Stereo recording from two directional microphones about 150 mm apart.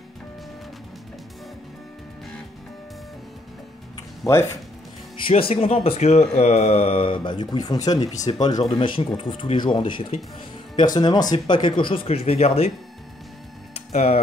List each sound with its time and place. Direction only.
4.2 s speech: 20° left (ahead or behind)
5.2 s speech: 40° left (ahead or behind)
13.9 s speech: 45° left (ahead or behind)